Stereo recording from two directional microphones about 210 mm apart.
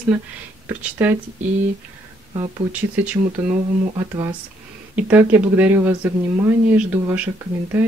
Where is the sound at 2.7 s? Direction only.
5° right (ahead or behind).